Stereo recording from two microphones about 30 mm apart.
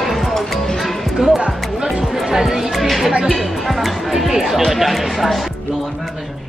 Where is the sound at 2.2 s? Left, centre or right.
Centre.